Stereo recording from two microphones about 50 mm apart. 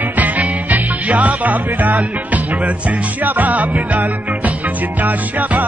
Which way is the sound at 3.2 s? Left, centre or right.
Right.